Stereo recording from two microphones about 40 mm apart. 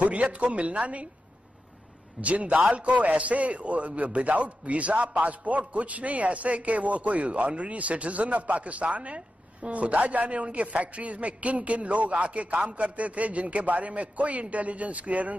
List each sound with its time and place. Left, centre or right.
0.0 s a man's voice: right
2.2 s a man's voice: right